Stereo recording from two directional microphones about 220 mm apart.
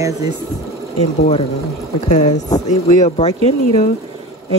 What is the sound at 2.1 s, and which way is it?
Speech, 30° left (ahead or behind).